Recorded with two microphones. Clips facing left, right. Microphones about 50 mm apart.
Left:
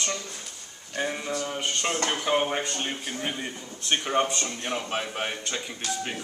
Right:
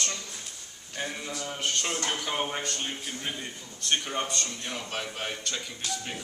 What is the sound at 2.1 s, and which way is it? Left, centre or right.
Speech, left.